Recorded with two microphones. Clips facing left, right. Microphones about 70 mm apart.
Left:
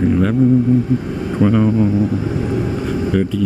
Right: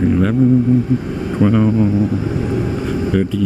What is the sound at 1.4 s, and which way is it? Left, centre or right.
Speech, right.